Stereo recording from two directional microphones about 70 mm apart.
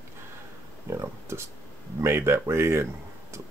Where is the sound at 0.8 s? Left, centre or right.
Right.